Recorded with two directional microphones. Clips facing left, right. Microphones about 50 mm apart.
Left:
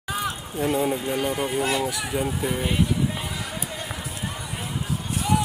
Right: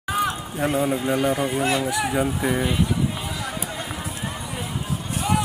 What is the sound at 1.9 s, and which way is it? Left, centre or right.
Speech, right.